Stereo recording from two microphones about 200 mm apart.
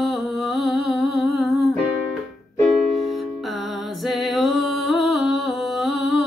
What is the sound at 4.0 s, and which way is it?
Music, centre (ahead or behind).